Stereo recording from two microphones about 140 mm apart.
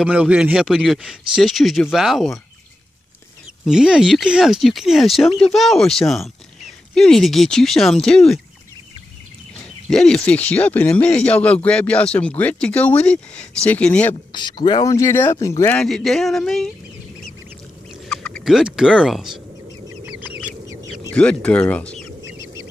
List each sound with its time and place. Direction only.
0.0 s speech: 10° right (ahead or behind)
3.6 s speech: 5° right (ahead or behind)
9.8 s speech: 5° left (ahead or behind)
14.3 s speech: 30° left (ahead or behind)
15.8 s speech: centre (ahead or behind)
18.0 s a sound: 5° left (ahead or behind)
18.5 s speech: 5° right (ahead or behind)
20.1 s chicken: 10° right (ahead or behind)
20.6 s chicken: 20° right (ahead or behind)
21.1 s speech: 5° left (ahead or behind)
22.2 s chicken: 20° right (ahead or behind)